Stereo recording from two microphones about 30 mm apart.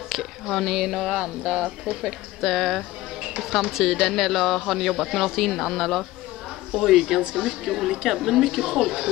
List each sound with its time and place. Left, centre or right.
0.1 s a sound: centre
0.7 s a woman's voice: centre
2.4 s speech: centre
3.2 s a sound: centre
4.0 s speech: centre
6.7 s a woman's voice: centre